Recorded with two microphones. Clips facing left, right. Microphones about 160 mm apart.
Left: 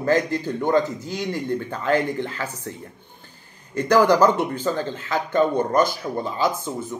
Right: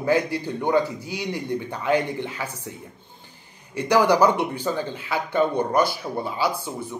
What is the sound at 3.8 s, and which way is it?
A man's voice, 10° right (ahead or behind).